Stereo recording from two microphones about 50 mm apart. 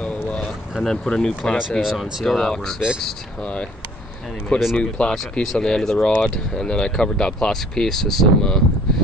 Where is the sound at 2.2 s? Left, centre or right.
Centre.